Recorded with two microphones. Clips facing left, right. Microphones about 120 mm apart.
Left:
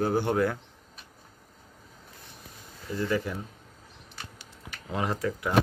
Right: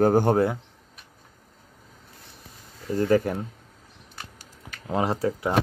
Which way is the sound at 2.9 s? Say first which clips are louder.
Right 7 dB; 50° right (ahead or behind).